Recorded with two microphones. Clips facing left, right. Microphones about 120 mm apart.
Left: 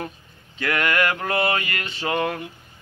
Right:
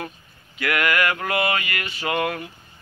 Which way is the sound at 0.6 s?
25° left (ahead or behind).